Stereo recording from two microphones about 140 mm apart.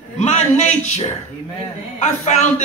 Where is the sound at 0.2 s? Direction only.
55° left (ahead or behind).